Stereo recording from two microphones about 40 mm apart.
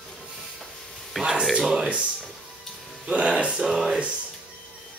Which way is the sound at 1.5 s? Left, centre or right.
Centre.